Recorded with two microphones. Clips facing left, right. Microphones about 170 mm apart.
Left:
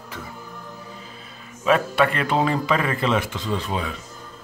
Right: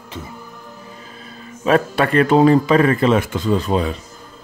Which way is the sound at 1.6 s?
40° right (ahead or behind).